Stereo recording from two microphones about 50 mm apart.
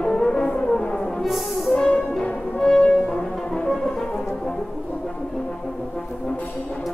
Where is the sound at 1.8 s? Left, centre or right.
Left.